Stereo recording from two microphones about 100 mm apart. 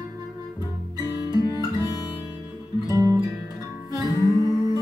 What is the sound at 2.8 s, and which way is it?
Music, 35° left (ahead or behind).